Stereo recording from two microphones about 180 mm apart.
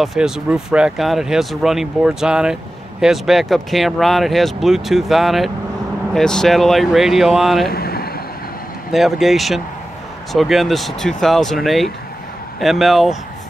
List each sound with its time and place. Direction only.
0.0 s speech: centre (ahead or behind)
7.6 s a sound: 60° left (ahead or behind)
8.9 s speech: centre (ahead or behind)